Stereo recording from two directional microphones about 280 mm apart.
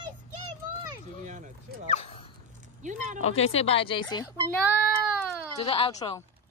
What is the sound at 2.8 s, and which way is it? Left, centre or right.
Speech, right.